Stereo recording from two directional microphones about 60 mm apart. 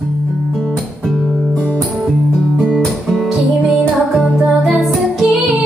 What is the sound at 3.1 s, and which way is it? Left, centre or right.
Music, centre.